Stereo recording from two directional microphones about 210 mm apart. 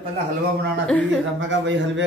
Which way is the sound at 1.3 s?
60° right (ahead or behind).